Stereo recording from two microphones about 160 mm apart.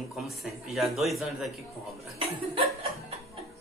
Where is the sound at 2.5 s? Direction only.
40° right (ahead or behind).